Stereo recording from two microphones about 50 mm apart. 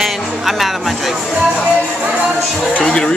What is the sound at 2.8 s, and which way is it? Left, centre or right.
Speech, centre.